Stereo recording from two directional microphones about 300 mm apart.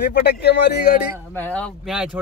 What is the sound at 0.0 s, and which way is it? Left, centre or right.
Speech, left.